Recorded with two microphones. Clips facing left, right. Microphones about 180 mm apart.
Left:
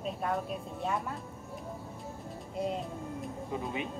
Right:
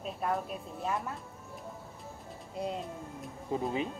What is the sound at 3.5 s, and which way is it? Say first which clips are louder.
Speech: right 5 dB; 35° right (ahead or behind).